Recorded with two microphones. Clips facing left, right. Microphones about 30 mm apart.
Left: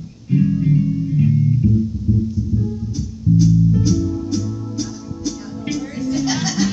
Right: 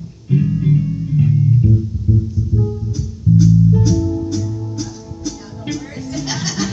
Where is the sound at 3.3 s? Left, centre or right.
Right.